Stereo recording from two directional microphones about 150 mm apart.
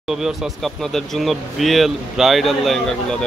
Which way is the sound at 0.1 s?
Centre (ahead or behind).